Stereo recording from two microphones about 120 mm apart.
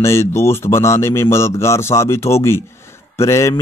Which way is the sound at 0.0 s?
20° left (ahead or behind).